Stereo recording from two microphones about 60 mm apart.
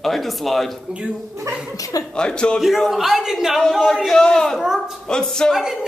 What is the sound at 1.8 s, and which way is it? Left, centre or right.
Speech, left.